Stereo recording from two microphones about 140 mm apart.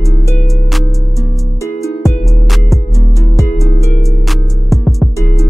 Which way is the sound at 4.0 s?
Centre (ahead or behind).